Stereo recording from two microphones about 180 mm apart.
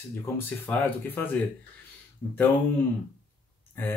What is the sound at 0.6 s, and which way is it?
Speech, 10° left (ahead or behind).